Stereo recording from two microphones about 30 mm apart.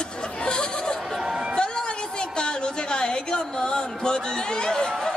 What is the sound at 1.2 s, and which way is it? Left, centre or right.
Chatter, right.